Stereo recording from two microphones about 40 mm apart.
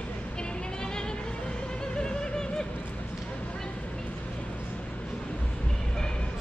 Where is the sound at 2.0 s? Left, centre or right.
Centre.